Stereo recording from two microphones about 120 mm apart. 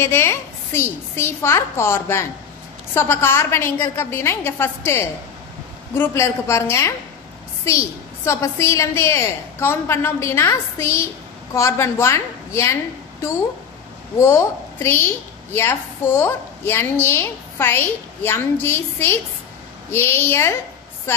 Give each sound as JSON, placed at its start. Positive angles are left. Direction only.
{"t": 0.0, "sound": "a woman's voice", "side_deg": 20}
{"t": 14.2, "sound": "a woman's voice", "side_deg": 20}